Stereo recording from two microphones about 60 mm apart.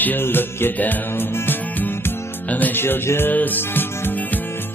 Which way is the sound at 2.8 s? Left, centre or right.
Left.